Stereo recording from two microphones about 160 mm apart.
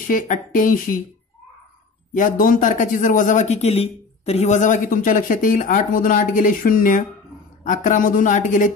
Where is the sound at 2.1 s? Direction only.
60° left (ahead or behind).